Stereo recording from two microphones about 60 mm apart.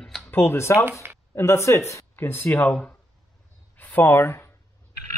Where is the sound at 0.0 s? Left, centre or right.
Centre.